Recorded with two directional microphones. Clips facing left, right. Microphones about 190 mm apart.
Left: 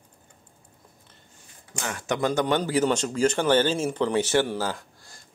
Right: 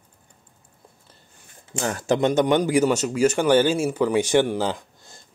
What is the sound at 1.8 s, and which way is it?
A man's voice, 35° right (ahead or behind).